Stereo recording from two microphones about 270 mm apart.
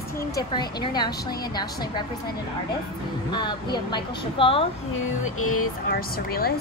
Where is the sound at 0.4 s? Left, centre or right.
Centre.